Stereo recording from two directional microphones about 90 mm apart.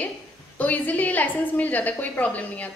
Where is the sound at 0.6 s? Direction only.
20° left (ahead or behind).